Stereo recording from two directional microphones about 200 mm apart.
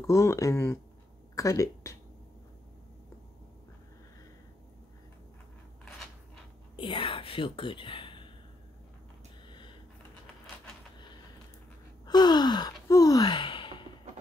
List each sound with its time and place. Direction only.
0.0 s speech: 15° left (ahead or behind)
6.8 s whispering: 25° left (ahead or behind)
9.5 s a sound: 25° left (ahead or behind)
12.1 s gasp: 20° left (ahead or behind)